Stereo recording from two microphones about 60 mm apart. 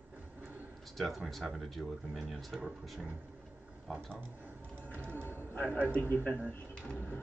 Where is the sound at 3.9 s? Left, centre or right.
Centre.